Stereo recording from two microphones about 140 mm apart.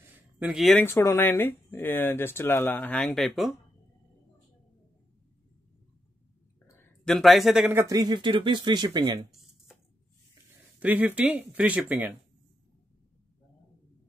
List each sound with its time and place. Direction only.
0.0 s a sound: 10° right (ahead or behind)
0.8 s speech: 15° left (ahead or behind); by 3.5 s centre (ahead or behind)
7.1 s speech: centre (ahead or behind)
7.6 s speech: 20° right (ahead or behind)
10.8 s speech: 10° right (ahead or behind)